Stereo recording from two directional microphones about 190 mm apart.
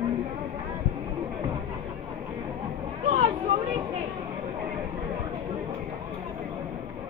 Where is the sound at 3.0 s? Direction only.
35° right (ahead or behind).